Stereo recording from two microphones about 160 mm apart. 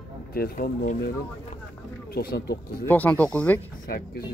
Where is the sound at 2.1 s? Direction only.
75° left (ahead or behind).